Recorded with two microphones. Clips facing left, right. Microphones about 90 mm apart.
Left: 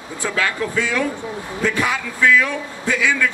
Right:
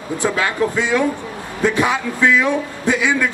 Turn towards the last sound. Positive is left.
turn(degrees=-20)  # may be behind; listen again after turning